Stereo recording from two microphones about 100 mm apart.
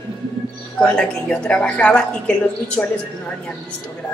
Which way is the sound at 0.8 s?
10° left (ahead or behind).